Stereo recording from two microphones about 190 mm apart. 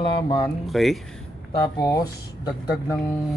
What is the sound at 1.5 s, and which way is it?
Speech, 20° left (ahead or behind).